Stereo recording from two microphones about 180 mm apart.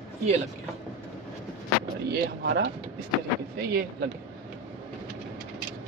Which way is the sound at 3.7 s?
60° right (ahead or behind).